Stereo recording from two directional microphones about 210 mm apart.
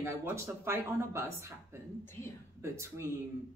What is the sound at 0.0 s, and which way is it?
Speech, 10° right (ahead or behind).